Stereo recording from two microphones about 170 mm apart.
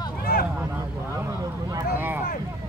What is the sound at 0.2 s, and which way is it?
Vehicle, 60° left (ahead or behind).